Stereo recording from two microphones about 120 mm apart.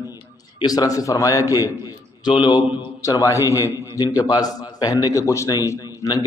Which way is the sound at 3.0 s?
25° left (ahead or behind).